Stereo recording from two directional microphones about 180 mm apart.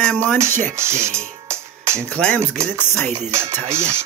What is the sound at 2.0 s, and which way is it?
Speech, 5° left (ahead or behind).